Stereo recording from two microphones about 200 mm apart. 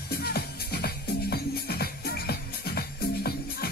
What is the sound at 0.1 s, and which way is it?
Music, 50° left (ahead or behind).